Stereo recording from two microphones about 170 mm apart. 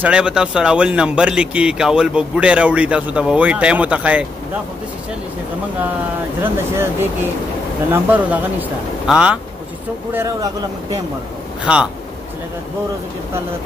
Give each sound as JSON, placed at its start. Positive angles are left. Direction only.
{"t": 0.0, "sound": "speech", "side_deg": -5}
{"t": 6.4, "sound": "a man's voice", "side_deg": -15}
{"t": 10.1, "sound": "speech", "side_deg": -20}
{"t": 11.6, "sound": "a man's voice", "side_deg": -5}